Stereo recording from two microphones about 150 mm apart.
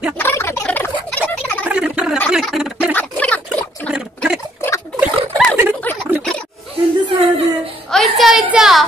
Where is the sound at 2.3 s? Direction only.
5° right (ahead or behind).